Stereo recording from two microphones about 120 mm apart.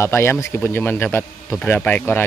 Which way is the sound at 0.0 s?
20° left (ahead or behind).